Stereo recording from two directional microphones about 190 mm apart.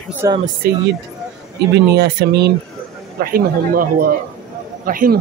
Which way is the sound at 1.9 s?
60° right (ahead or behind).